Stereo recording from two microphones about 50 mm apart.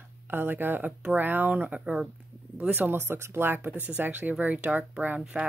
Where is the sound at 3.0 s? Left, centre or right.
Right.